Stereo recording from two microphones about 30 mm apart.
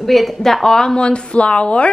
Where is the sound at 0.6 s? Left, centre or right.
Centre.